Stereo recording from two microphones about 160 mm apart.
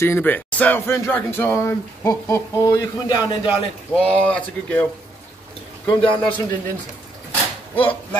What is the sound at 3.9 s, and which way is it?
Speech, 10° left (ahead or behind).